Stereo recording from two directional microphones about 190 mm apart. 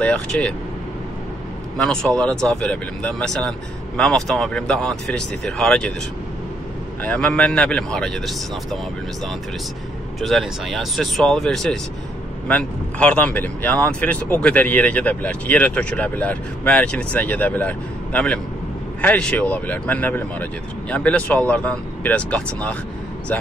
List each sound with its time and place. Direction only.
0.0 s speech: 5° left (ahead or behind)
1.8 s speech: 5° left (ahead or behind)
7.0 s speech: 5° left (ahead or behind)
10.2 s speech: centre (ahead or behind)